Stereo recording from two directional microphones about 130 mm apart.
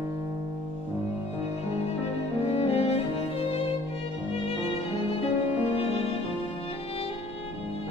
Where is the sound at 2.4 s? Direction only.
50° left (ahead or behind).